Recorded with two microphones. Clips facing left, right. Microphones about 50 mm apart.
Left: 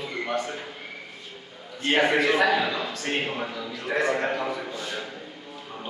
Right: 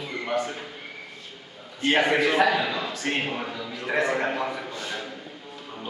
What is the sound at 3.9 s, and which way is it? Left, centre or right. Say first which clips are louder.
Speech: even; right.